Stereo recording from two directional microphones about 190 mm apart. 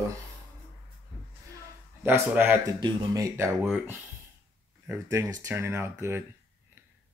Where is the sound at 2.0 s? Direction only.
10° right (ahead or behind).